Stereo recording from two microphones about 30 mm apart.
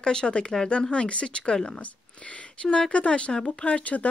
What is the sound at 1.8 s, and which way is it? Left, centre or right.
Speech, left.